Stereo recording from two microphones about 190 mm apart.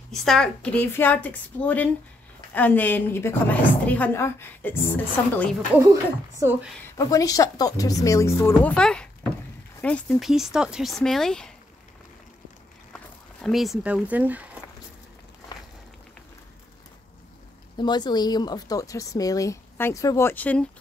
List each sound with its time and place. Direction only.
0.1 s a woman's voice: centre (ahead or behind)
6.4 s speech: 15° right (ahead or behind)
7.0 s a woman's voice: 20° left (ahead or behind); by 11.5 s 5° left (ahead or behind)
12.9 s speech: centre (ahead or behind)
17.7 s a woman's voice: 20° left (ahead or behind)